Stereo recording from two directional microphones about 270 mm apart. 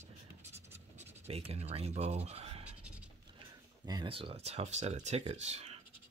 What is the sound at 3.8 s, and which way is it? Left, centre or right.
Speech, centre.